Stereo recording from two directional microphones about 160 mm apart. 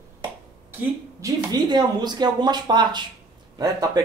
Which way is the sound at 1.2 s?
25° right (ahead or behind).